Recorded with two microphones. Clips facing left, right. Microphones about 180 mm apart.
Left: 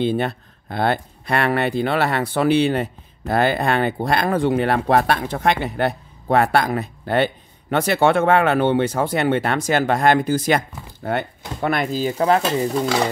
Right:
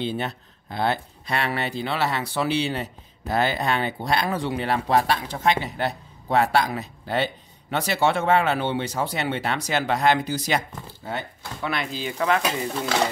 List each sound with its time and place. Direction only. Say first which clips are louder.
0.0 s speech: left 7 dB; 55° left (ahead or behind)
11.6 s sizzle: left 8 dB; 50° left (ahead or behind)